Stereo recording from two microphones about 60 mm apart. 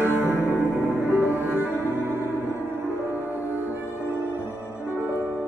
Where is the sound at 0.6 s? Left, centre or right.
Right.